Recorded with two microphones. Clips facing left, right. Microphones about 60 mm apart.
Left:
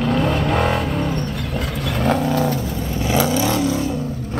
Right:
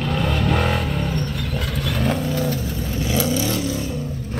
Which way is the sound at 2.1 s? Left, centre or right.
Left.